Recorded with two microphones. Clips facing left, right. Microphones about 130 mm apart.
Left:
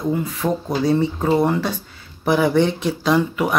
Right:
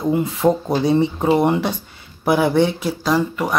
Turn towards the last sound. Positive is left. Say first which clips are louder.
# left 1 dB
turn(degrees=5)  # may be behind; listen again after turning